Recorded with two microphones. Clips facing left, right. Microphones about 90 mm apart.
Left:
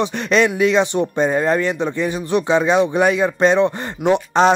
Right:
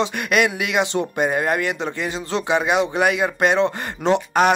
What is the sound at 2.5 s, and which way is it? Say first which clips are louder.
Speech: left 3 dB; 15° right (ahead or behind).